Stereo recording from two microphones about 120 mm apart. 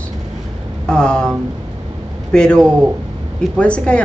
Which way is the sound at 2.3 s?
5° left (ahead or behind).